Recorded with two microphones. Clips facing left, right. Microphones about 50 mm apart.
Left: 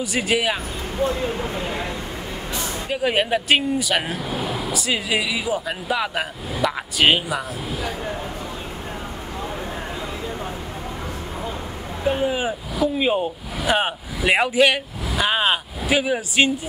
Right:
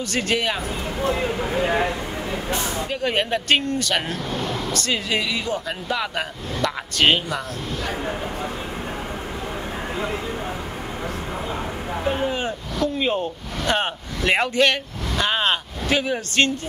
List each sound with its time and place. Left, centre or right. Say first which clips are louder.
0.0 s speech: left 1 dB; centre
1.0 s speech: even; right
2.9 s speech: left 4 dB; centre
12.1 s speech: left 3 dB; centre